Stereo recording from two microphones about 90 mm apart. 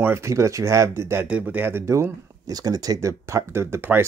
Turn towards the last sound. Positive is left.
turn(degrees=-25)  # may be behind; listen again after turning